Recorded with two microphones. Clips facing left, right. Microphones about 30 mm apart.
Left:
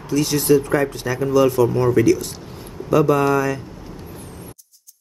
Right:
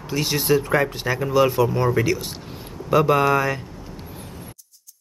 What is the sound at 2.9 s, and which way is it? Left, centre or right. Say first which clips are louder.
Speech: left 1 dB; right.